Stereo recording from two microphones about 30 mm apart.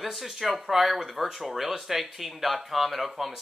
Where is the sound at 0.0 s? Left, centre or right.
Centre.